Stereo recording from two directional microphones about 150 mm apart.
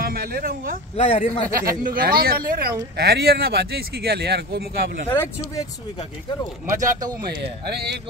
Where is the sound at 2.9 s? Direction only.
90° right.